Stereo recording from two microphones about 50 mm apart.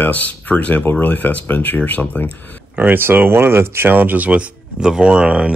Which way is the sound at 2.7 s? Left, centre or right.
Right.